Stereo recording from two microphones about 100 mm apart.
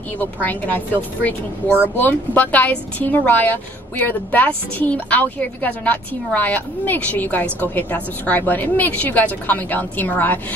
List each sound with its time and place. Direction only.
0.4 s a woman's voice: 15° left (ahead or behind)